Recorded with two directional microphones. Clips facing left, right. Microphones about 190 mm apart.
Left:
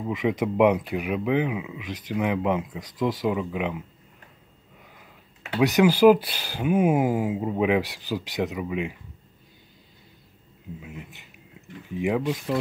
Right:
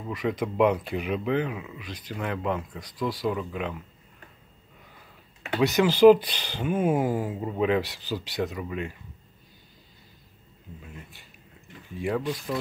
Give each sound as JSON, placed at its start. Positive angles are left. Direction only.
{"t": 0.0, "sound": "speech", "side_deg": 15}
{"t": 5.6, "sound": "speech", "side_deg": 15}
{"t": 10.8, "sound": "speech", "side_deg": 15}